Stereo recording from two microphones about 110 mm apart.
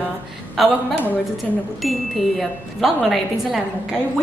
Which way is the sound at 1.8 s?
Centre (ahead or behind).